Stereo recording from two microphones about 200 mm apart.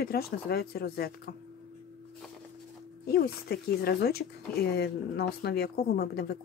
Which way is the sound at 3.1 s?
55° left (ahead or behind).